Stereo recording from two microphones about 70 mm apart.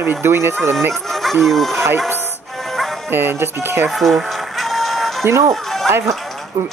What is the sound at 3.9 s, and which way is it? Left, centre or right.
Music, centre.